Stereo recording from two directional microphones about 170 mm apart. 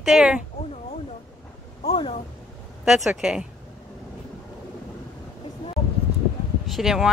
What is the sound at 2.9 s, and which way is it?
Speech, centre (ahead or behind).